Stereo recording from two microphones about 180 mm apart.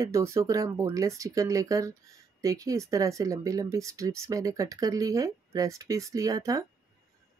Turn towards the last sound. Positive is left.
turn(degrees=-20)  # may be behind; listen again after turning